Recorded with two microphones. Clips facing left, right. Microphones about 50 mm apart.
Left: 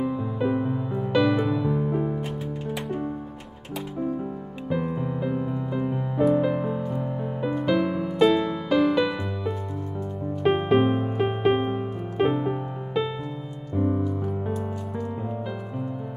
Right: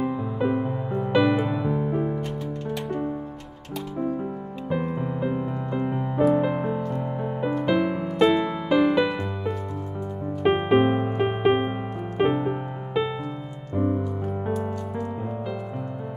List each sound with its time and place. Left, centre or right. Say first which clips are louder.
0.0 s music: right 1 dB; centre
4.2 s music: right 2 dB; centre
10.4 s music: right 1 dB; centre